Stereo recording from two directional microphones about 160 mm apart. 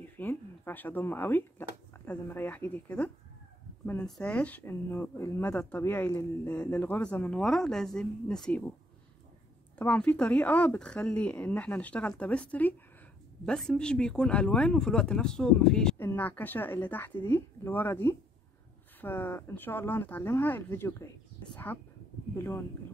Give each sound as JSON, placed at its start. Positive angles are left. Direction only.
{"t": 0.0, "sound": "speech", "side_deg": 10}
{"t": 9.8, "sound": "speech", "side_deg": 10}
{"t": 22.3, "sound": "speech", "side_deg": 15}